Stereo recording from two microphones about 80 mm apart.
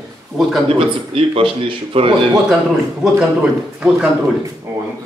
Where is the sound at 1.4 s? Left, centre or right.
Right.